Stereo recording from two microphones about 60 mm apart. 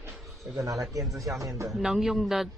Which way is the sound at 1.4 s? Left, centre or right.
Right.